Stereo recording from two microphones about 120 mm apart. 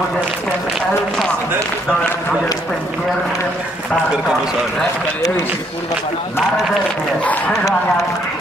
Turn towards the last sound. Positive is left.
turn(degrees=10)  # may be behind; listen again after turning